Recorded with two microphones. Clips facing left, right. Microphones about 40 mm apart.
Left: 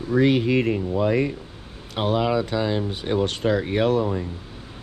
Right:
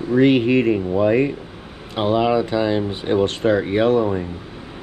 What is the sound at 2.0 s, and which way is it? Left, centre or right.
Speech, centre.